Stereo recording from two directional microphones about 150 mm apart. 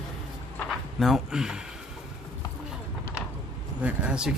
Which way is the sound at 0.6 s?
Centre (ahead or behind).